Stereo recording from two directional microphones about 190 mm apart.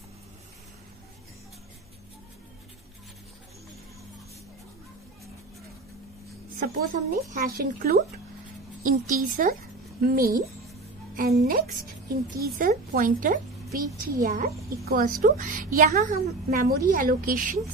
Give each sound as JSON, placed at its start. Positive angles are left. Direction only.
{"t": 6.6, "sound": "a woman's voice", "side_deg": -50}